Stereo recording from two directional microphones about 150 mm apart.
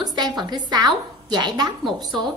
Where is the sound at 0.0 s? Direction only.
25° right (ahead or behind).